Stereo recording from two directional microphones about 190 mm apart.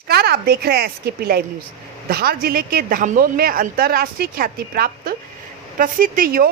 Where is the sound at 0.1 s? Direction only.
55° right (ahead or behind).